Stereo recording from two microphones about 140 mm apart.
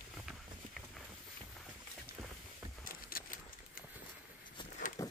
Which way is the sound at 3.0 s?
90° left.